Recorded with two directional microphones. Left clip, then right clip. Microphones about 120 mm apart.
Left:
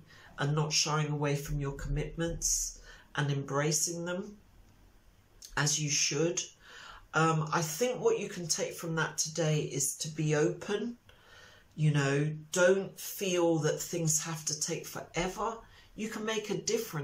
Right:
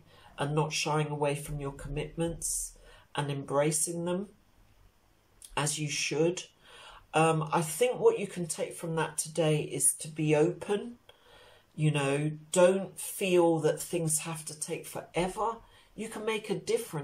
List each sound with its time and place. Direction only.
0.4 s speech: 25° right (ahead or behind)
5.5 s speech: 25° right (ahead or behind)
11.8 s speech: 25° right (ahead or behind)